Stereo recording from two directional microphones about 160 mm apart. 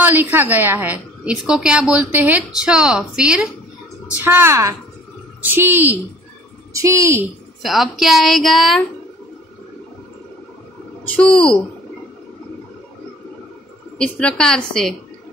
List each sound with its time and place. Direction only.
0.0 s a woman's voice: 10° right (ahead or behind)
7.6 s speech: centre (ahead or behind)
11.1 s a woman's voice: 5° left (ahead or behind)
13.9 s speech: 5° left (ahead or behind)